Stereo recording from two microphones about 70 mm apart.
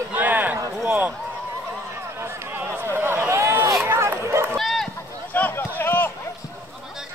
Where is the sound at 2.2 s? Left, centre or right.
Right.